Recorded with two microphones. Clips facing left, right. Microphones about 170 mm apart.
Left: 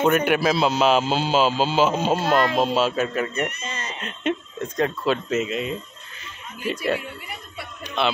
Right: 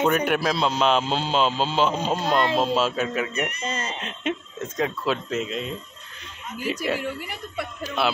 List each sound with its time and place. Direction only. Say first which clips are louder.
0.0 s a man's voice: left 2 dB; 5° left (ahead or behind)
3.6 s speech: right 4 dB; 30° right (ahead or behind)
4.0 s a man's voice: left 3 dB; centre (ahead or behind)